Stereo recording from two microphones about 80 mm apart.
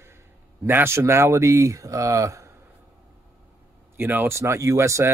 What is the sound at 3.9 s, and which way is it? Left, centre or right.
Speech, right.